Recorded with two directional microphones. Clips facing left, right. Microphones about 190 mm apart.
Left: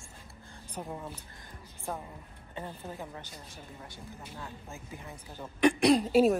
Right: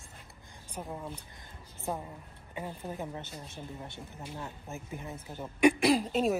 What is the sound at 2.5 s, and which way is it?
Speech, 15° right (ahead or behind).